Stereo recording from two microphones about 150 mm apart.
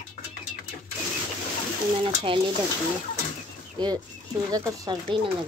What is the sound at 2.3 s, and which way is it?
Speech, 35° right (ahead or behind).